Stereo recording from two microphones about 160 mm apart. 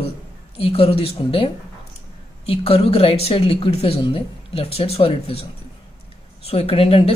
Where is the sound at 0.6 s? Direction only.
35° left (ahead or behind).